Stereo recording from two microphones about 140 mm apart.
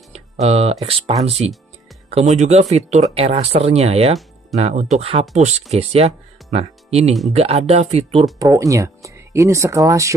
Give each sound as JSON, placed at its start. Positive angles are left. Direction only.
{"t": 0.1, "sound": "speech", "side_deg": -45}
{"t": 8.4, "sound": "speech", "side_deg": -25}